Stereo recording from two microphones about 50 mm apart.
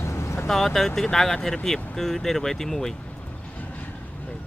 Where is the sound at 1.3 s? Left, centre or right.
Centre.